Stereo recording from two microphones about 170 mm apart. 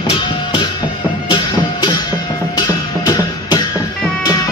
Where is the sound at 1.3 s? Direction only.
25° left (ahead or behind).